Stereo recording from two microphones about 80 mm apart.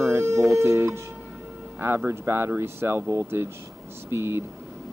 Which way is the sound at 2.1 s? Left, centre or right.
Right.